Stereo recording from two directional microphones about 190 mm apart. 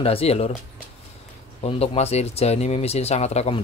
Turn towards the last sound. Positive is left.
turn(degrees=35)  # may be behind; listen again after turning